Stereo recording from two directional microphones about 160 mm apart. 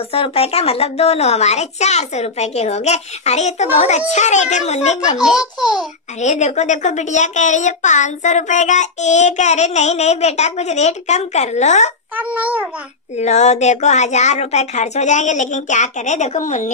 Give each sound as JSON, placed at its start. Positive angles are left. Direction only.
{"t": 0.1, "sound": "speech", "side_deg": 35}
{"t": 5.6, "sound": "a child's voice", "side_deg": -5}
{"t": 6.2, "sound": "speech", "side_deg": 45}
{"t": 12.2, "sound": "babbling", "side_deg": -10}
{"t": 13.2, "sound": "speech", "side_deg": 45}